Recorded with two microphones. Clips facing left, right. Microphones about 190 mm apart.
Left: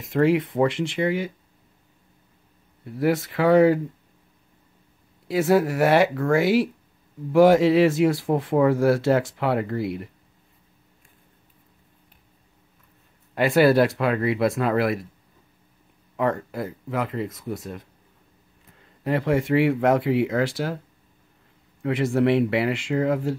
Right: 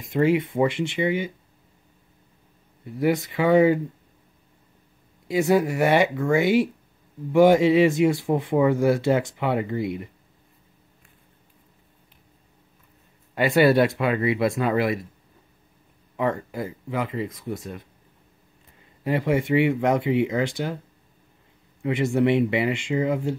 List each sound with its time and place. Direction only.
0.0 s speech: centre (ahead or behind)
2.8 s speech: centre (ahead or behind)
5.3 s speech: centre (ahead or behind)
13.4 s speech: centre (ahead or behind)
16.2 s speech: centre (ahead or behind)
21.8 s speech: centre (ahead or behind)